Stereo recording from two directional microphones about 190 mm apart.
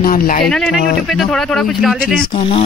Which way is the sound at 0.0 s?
45° left (ahead or behind).